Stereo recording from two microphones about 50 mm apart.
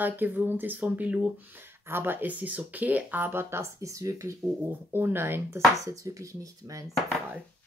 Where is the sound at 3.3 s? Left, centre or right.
Right.